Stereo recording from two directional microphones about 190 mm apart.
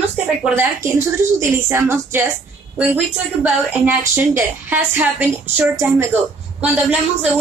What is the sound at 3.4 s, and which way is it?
A woman's voice, 10° right (ahead or behind).